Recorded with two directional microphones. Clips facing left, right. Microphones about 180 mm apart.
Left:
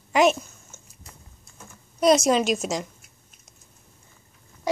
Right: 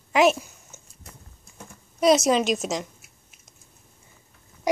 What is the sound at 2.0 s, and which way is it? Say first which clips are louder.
A woman's voice: even; centre (ahead or behind).